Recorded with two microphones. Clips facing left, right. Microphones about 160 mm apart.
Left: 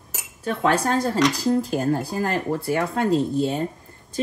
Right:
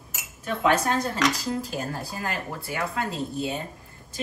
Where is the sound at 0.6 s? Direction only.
35° left (ahead or behind).